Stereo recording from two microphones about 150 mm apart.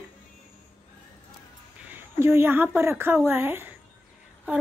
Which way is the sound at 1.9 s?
15° right (ahead or behind).